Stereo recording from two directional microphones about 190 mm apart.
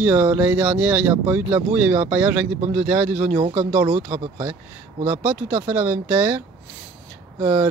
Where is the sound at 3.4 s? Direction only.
25° right (ahead or behind).